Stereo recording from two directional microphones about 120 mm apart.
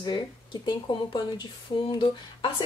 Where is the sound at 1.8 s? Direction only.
45° left (ahead or behind).